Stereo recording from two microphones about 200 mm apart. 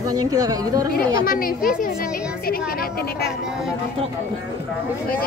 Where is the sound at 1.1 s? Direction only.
45° left (ahead or behind).